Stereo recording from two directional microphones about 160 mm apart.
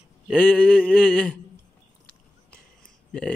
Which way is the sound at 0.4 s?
10° left (ahead or behind).